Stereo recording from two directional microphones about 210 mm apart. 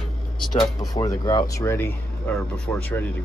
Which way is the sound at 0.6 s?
15° left (ahead or behind).